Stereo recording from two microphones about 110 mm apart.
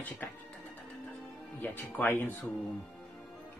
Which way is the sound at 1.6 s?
15° left (ahead or behind).